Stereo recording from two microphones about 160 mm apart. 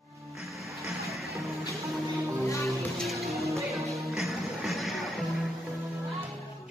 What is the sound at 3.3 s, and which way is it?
Music, 20° right (ahead or behind).